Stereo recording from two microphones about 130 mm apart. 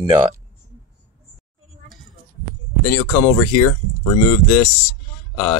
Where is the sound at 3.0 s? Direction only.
20° left (ahead or behind).